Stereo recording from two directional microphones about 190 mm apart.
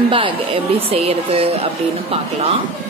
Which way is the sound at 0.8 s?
30° right (ahead or behind).